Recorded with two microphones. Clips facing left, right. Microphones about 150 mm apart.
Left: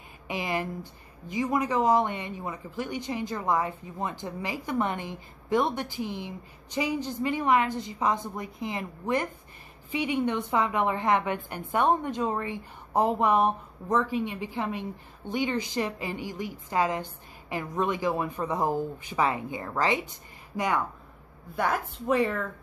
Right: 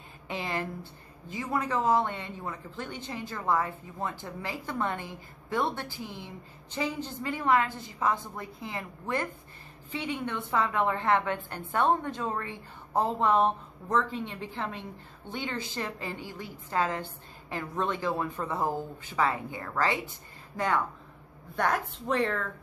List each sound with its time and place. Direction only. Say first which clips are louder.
0.3 s a woman's voice: left 3 dB; 15° left (ahead or behind)